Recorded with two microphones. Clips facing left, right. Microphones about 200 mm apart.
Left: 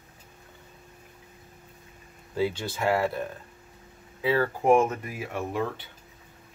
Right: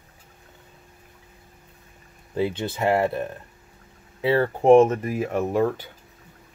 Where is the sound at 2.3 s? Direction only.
20° right (ahead or behind); by 5.8 s 40° right (ahead or behind).